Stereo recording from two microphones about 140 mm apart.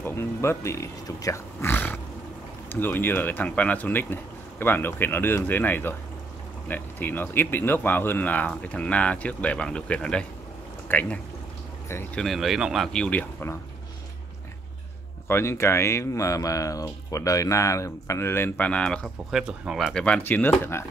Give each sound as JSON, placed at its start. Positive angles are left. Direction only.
{"t": 0.0, "sound": "speech", "side_deg": 20}
{"t": 12.2, "sound": "speech", "side_deg": 0}
{"t": 15.2, "sound": "speech", "side_deg": 20}
{"t": 19.3, "sound": "speech", "side_deg": -5}